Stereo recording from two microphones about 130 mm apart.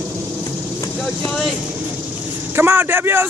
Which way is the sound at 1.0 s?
Centre (ahead or behind).